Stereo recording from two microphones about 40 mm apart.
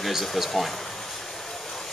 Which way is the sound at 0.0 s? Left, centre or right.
Centre.